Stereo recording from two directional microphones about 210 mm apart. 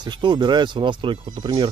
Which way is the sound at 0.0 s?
20° right (ahead or behind).